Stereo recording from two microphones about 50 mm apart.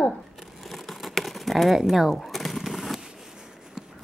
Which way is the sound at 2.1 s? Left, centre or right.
Centre.